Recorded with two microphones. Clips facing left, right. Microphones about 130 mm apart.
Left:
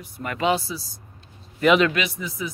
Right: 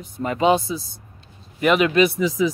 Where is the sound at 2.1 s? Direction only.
90° right.